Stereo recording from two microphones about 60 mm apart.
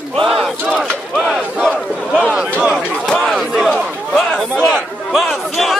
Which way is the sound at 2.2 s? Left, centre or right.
Right.